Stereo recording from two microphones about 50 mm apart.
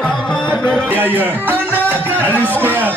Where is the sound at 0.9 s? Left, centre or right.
Right.